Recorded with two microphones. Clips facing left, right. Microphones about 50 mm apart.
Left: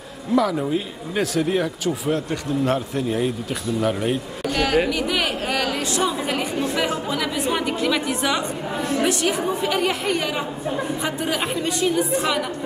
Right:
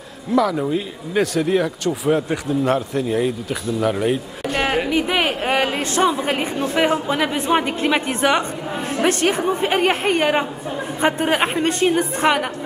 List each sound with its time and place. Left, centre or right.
0.3 s speech: centre
4.5 s speech: right